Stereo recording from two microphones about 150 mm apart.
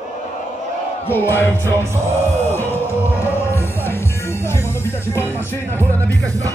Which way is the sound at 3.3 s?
15° left (ahead or behind).